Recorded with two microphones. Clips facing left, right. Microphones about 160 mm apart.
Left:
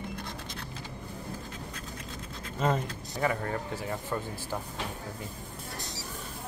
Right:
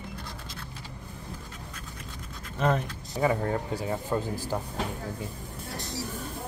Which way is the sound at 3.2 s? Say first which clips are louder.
Right 4 dB; 20° right (ahead or behind).